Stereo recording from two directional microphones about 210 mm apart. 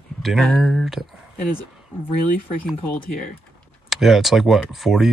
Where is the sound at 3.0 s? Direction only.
45° left (ahead or behind).